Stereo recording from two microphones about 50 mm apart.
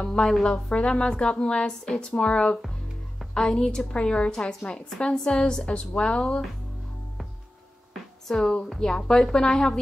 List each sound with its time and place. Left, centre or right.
0.0 s a woman's voice: centre
5.7 s a woman's voice: left
8.3 s a woman's voice: centre